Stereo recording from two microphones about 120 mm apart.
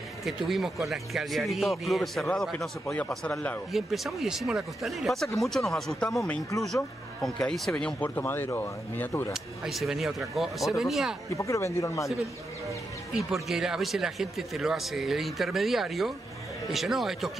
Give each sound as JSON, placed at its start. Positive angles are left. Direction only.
{"t": 0.2, "sound": "a man's voice", "side_deg": 0}
{"t": 3.7, "sound": "a man's voice", "side_deg": 0}
{"t": 9.3, "sound": "a man's voice", "side_deg": 0}
{"t": 11.3, "sound": "speech", "side_deg": 25}
{"t": 13.1, "sound": "a man's voice", "side_deg": -5}